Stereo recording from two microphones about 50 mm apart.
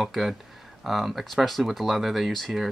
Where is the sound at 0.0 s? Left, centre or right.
Centre.